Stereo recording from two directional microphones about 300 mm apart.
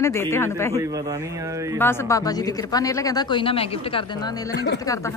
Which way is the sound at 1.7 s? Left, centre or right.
Centre.